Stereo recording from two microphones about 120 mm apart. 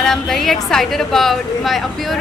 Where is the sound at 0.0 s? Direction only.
Centre (ahead or behind).